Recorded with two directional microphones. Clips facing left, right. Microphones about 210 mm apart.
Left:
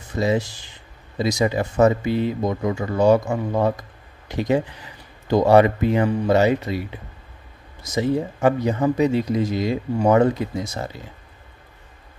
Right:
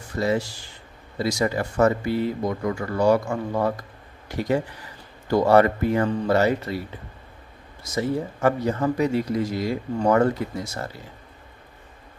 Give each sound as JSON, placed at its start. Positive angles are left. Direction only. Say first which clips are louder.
{"t": 0.1, "sound": "speech", "louder": "left 2 dB", "side_deg": 20}